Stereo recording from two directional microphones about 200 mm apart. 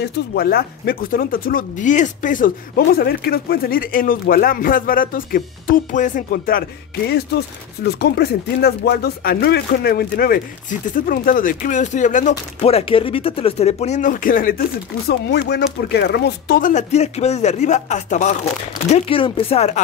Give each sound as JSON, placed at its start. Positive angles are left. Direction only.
{"t": 0.0, "sound": "speech", "side_deg": 50}
{"t": 15.0, "sound": "speech", "side_deg": 55}